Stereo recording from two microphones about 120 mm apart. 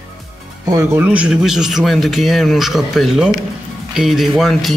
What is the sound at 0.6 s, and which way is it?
Speech, 25° right (ahead or behind).